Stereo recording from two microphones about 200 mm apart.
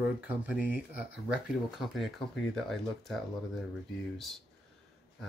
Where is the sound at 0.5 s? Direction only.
10° right (ahead or behind).